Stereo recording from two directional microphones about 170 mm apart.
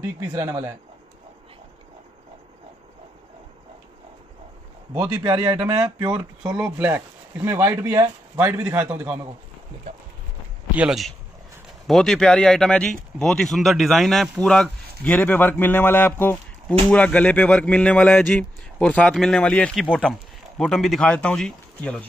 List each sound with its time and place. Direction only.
0.0 s speech: 15° right (ahead or behind)
4.9 s speech: 10° right (ahead or behind); by 6.1 s 25° right (ahead or behind)
6.5 s speech: 10° right (ahead or behind)
10.8 s speech: centre (ahead or behind)